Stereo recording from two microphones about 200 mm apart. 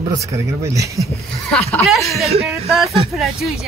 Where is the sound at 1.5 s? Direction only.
Centre (ahead or behind).